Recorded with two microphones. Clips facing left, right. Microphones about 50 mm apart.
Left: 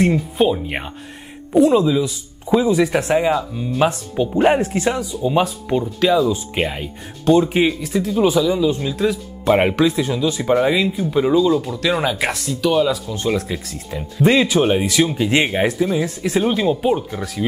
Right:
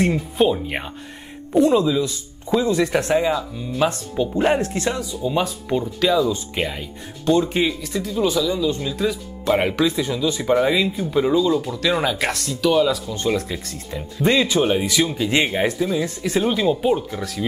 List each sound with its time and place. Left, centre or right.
0.0 s speech: centre
5.4 s speech: centre
8.6 s speech: centre
9.4 s speech: centre